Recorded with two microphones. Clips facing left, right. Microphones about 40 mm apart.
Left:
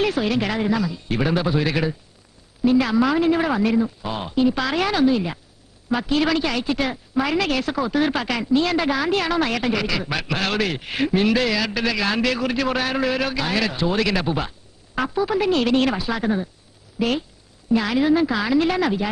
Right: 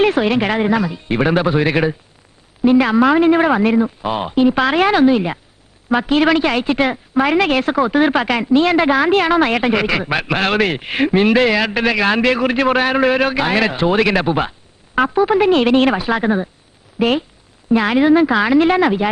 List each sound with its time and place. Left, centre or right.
0.0 s a woman's voice: right